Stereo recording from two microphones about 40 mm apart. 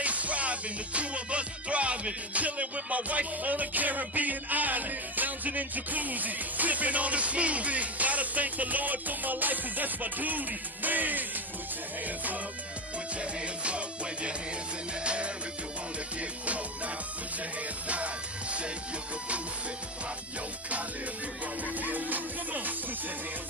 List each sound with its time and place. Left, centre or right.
0.0 s music: right
13.2 s music: right
21.8 s music: right